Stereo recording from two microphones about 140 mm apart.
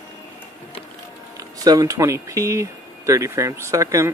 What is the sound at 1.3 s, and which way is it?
Speech, 25° right (ahead or behind).